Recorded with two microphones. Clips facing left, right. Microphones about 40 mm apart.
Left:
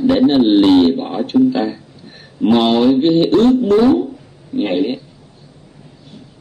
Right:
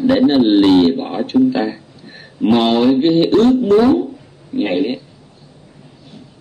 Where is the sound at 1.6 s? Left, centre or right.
Centre.